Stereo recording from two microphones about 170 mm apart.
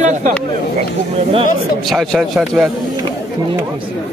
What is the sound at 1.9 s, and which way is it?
Speech, centre (ahead or behind).